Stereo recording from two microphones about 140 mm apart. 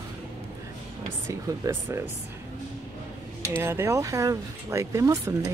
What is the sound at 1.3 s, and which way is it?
Speech, 20° right (ahead or behind).